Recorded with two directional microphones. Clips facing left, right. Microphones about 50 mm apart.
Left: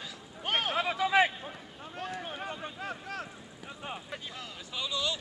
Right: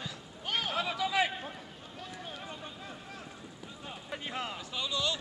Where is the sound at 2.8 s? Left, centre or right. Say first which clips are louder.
Left 7 dB; left.